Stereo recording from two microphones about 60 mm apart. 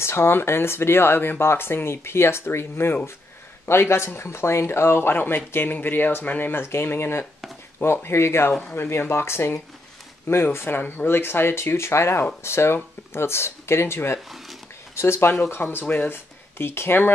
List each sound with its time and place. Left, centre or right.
0.0 s speech: left
15.8 s speech: left
16.1 s speech: left